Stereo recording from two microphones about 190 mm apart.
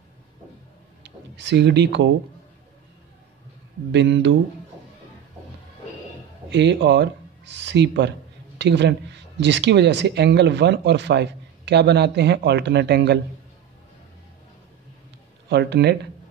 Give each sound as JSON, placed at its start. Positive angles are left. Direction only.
{"t": 1.0, "sound": "speech", "side_deg": -70}
{"t": 3.9, "sound": "speech", "side_deg": -70}
{"t": 6.5, "sound": "speech", "side_deg": -65}
{"t": 15.5, "sound": "speech", "side_deg": -60}